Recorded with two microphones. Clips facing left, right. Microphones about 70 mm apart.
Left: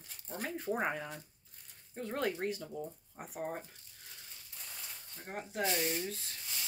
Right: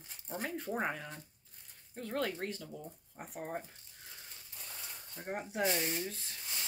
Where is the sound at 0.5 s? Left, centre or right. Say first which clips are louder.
Left 3 dB; centre.